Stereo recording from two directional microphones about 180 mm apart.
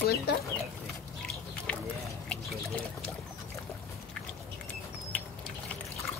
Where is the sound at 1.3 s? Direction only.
5° left (ahead or behind).